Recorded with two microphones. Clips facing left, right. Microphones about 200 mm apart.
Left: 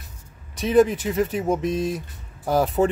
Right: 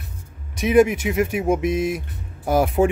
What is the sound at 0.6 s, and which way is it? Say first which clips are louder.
Speech: right 2 dB; 10° right (ahead or behind).